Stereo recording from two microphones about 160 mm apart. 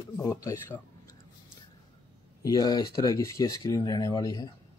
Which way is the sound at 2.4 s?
25° left (ahead or behind).